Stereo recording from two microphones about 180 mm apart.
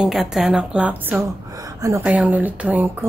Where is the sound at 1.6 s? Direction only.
20° right (ahead or behind).